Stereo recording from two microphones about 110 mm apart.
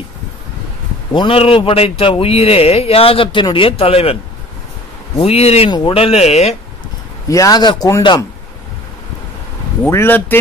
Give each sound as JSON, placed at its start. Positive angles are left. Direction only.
{"t": 1.1, "sound": "speech", "side_deg": 55}
{"t": 5.7, "sound": "speech", "side_deg": 55}
{"t": 7.2, "sound": "a man's voice", "side_deg": 30}
{"t": 9.8, "sound": "speech", "side_deg": 20}